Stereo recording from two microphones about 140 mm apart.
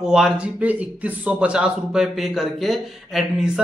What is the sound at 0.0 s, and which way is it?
Speech, 5° right (ahead or behind).